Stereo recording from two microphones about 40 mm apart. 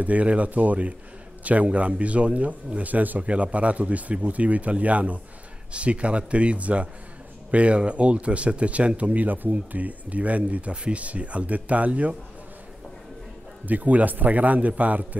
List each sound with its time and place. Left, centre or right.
0.0 s speech: right
3.3 s speech: right
13.7 s a man's voice: right